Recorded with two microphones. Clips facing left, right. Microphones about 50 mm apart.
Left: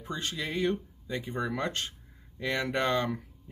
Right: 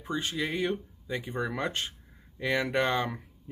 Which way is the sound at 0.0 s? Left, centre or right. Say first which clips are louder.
Right 3 dB; centre.